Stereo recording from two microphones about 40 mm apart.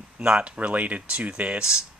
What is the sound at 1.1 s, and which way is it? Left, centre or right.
Speech, right.